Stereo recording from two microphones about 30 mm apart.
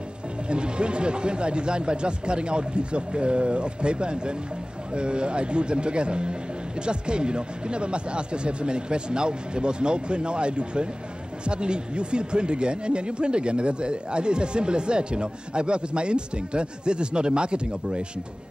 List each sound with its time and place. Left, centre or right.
0.5 s speech: right